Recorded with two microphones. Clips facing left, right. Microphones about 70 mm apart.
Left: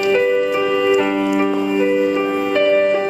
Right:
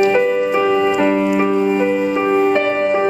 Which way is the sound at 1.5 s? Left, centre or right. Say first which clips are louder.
Right 1 dB; right.